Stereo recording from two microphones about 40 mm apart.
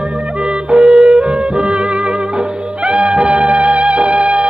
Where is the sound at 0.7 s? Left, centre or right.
Right.